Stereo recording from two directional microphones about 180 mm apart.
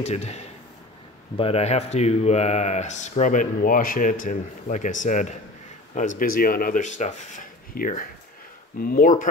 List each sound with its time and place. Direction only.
0.0 s speech: 40° left (ahead or behind)